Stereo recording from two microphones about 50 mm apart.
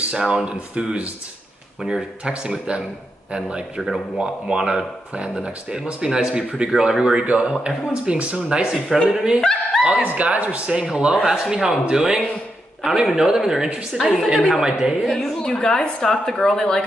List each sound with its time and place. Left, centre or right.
0.1 s a man's voice: centre
1.8 s a man's voice: centre
9.1 s speech: centre
9.8 s a man's voice: right
12.8 s speech: centre
15.0 s a woman's voice: centre
15.3 s speech: centre